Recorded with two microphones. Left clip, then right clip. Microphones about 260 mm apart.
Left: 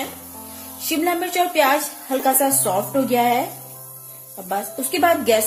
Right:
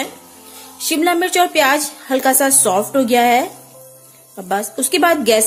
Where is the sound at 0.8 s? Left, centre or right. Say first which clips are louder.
Right 6 dB; right.